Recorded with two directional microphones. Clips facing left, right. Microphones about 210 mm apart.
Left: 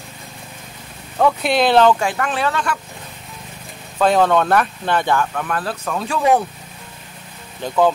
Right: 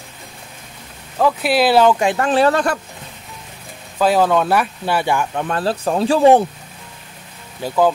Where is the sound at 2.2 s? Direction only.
35° right (ahead or behind).